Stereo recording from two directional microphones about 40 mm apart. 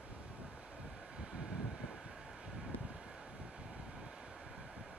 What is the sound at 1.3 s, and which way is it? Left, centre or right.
Vehicle, centre.